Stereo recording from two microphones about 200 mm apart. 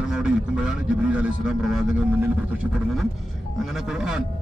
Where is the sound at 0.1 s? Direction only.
5° right (ahead or behind).